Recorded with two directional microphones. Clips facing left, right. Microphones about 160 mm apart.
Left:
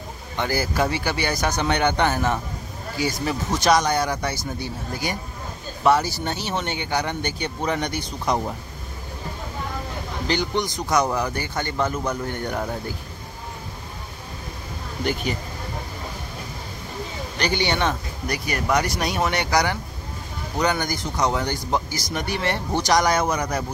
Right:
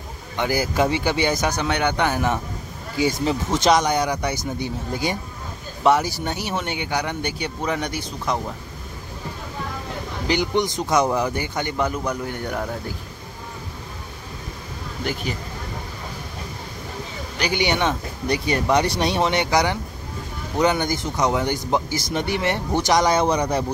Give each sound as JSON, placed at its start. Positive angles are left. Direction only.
{"t": 0.4, "sound": "a man's voice", "side_deg": -15}
{"t": 1.6, "sound": "a man's voice", "side_deg": -5}
{"t": 3.0, "sound": "a man's voice", "side_deg": -20}
{"t": 10.2, "sound": "a man's voice", "side_deg": -15}
{"t": 17.4, "sound": "a man's voice", "side_deg": -15}
{"t": 18.2, "sound": "a man's voice", "side_deg": -25}